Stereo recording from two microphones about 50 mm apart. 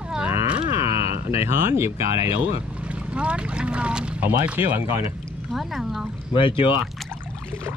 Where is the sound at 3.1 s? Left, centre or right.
Right.